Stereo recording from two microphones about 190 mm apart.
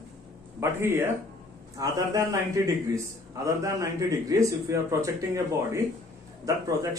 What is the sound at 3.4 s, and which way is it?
Speech, 15° right (ahead or behind).